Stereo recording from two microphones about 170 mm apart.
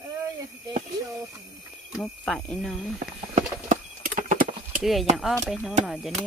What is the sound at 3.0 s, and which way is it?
Horse, 50° right (ahead or behind).